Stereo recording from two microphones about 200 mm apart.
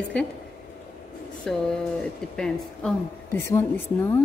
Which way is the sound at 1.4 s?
5° left (ahead or behind).